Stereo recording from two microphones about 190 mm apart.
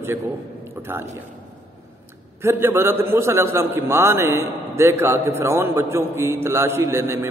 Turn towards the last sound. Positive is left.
turn(degrees=-15)  # may be behind; listen again after turning